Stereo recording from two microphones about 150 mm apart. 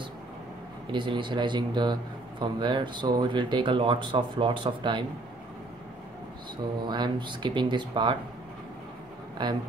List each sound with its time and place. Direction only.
0.9 s a man's voice: 30° right (ahead or behind)
6.8 s a man's voice: 30° right (ahead or behind)
9.4 s a man's voice: 30° right (ahead or behind)